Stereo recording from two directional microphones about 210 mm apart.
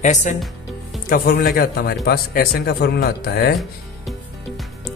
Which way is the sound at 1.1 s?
45° left (ahead or behind).